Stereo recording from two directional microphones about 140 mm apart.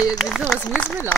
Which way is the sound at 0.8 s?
20° left (ahead or behind).